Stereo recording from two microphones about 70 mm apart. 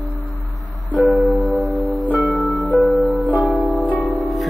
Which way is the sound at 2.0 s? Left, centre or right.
Right.